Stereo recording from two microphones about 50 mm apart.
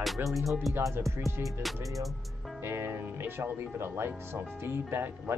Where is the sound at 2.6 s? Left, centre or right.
Right.